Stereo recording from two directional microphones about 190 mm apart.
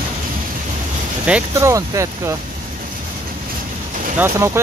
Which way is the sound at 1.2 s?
10° right (ahead or behind).